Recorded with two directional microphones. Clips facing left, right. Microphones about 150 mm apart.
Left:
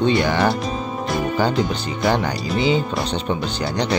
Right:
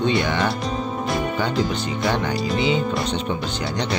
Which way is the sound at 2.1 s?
35° left (ahead or behind).